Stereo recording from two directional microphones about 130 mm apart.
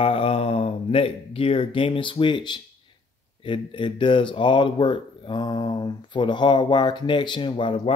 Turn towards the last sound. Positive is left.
turn(degrees=40)  # may be behind; listen again after turning